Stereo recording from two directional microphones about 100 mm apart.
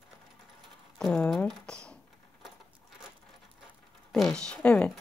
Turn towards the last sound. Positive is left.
turn(degrees=10)  # may be behind; listen again after turning